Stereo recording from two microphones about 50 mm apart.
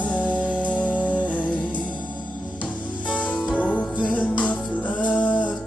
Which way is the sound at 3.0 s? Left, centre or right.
Left.